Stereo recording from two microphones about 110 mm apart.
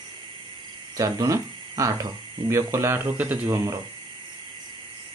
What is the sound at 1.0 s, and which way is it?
Speech, 30° right (ahead or behind).